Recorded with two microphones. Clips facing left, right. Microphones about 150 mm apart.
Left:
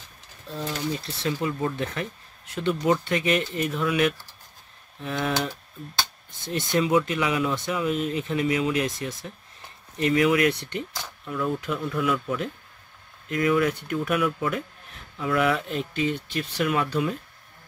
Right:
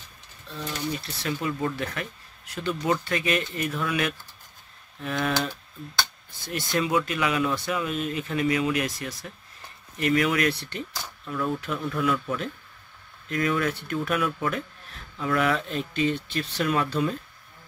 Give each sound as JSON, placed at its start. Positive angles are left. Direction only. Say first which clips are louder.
{"t": 0.5, "sound": "speech", "louder": "left 2 dB", "side_deg": 30}